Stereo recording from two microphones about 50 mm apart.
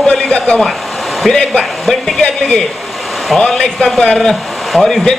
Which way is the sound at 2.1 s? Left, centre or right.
Centre.